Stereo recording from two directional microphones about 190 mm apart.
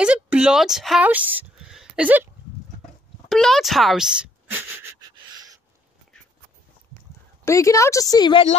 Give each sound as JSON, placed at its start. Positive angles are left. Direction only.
{"t": 0.0, "sound": "speech", "side_deg": -5}
{"t": 3.3, "sound": "speech", "side_deg": 0}
{"t": 5.3, "sound": "owl", "side_deg": -20}
{"t": 7.4, "sound": "a woman's voice", "side_deg": 15}